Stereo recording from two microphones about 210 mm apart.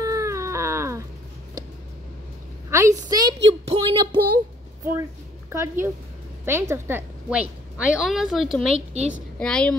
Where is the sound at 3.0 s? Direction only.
20° right (ahead or behind).